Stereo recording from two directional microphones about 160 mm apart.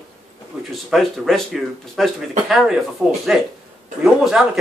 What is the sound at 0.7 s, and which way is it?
Speech, centre (ahead or behind).